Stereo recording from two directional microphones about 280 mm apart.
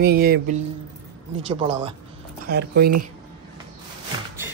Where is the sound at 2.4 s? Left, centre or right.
Right.